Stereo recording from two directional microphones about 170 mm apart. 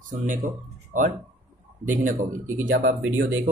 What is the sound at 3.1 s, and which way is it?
Speech, 90° right.